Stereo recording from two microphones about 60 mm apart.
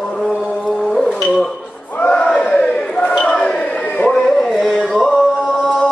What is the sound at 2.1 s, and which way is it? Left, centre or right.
Crowd, centre.